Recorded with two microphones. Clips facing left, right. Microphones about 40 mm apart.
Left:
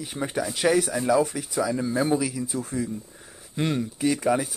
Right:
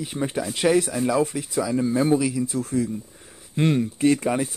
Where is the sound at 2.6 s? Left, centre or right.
Centre.